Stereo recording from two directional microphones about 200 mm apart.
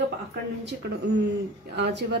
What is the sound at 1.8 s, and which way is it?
Speech, 60° right (ahead or behind).